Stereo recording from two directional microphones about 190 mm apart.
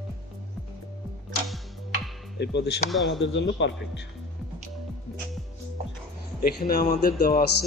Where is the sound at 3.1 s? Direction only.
75° left (ahead or behind).